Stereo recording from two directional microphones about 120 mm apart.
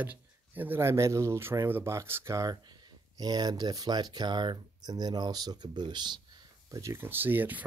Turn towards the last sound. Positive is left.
turn(degrees=-15)  # may be behind; listen again after turning